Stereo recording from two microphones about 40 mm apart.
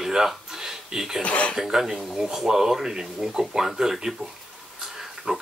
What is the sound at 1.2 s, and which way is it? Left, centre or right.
Speech, left.